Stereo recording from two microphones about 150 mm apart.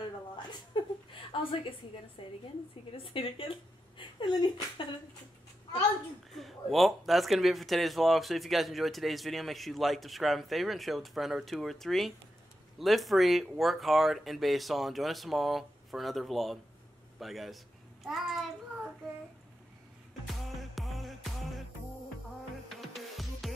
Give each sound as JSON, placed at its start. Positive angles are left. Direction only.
{"t": 1.3, "sound": "speech", "side_deg": 35}
{"t": 6.3, "sound": "speech", "side_deg": 0}
{"t": 20.2, "sound": "music", "side_deg": 0}
{"t": 22.7, "sound": "music", "side_deg": 0}